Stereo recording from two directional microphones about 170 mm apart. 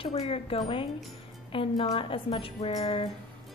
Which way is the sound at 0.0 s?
35° left (ahead or behind).